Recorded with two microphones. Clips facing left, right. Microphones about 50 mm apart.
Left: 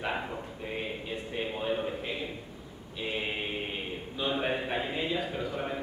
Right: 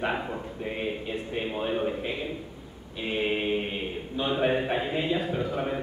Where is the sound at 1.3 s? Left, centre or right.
Centre.